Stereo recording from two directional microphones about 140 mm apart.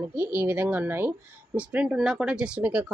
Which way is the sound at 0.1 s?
15° right (ahead or behind).